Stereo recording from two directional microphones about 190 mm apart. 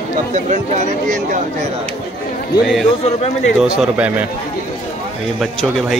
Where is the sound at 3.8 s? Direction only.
5° right (ahead or behind).